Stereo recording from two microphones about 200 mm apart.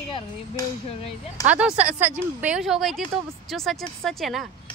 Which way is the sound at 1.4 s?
5° right (ahead or behind).